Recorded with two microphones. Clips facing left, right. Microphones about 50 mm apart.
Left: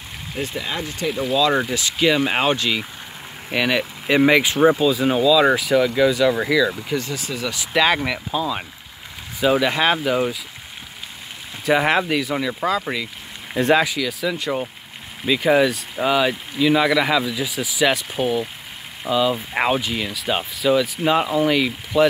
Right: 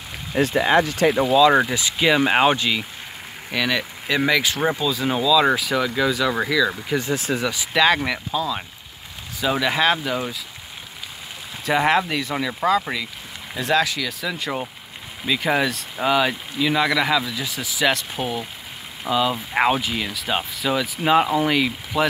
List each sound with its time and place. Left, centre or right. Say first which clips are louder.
0.4 s speech: right 9 dB; right
1.3 s speech: right 2 dB; centre
3.5 s speech: left 3 dB; centre
7.2 s speech: right 4 dB; right
7.7 s speech: even; centre
11.6 s speech: left 1 dB; centre